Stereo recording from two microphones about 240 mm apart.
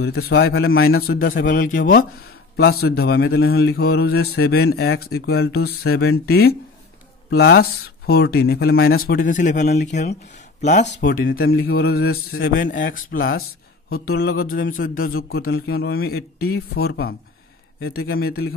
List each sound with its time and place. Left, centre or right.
0.0 s a man's voice: left
0.8 s speech: left
11.4 s speech: left